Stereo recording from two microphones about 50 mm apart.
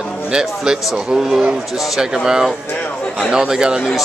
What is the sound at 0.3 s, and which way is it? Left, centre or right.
A man's voice, centre.